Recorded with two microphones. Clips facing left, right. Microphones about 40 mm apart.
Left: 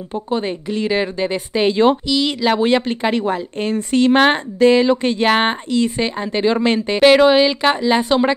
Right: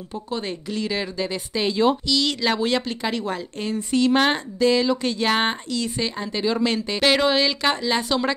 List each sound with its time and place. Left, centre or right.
0.3 s speech: left
2.0 s a woman's voice: left
3.5 s a woman's voice: left